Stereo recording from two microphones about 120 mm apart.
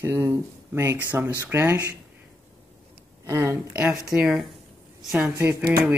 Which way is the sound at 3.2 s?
25° right (ahead or behind).